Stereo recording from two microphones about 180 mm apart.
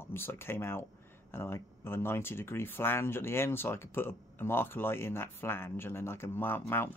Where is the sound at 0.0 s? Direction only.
15° left (ahead or behind).